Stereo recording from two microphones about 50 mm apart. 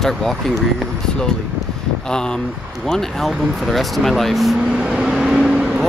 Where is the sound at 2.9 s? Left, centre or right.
Centre.